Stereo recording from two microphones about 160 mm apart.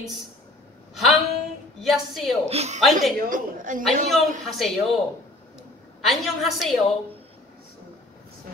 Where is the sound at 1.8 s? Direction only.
Centre (ahead or behind).